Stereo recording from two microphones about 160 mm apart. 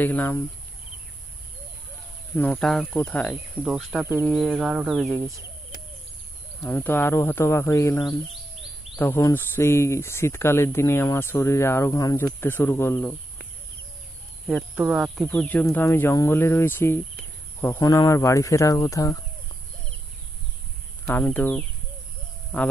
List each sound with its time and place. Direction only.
0.0 s speech: 10° left (ahead or behind)
2.3 s speech: 10° left (ahead or behind)
3.6 s speech: 5° right (ahead or behind)
6.6 s speech: 15° left (ahead or behind)
14.8 s speech: 5° right (ahead or behind)
15.2 s speech: 10° left (ahead or behind)
21.1 s speech: 10° left (ahead or behind)